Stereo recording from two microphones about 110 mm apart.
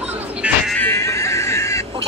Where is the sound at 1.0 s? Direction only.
25° left (ahead or behind).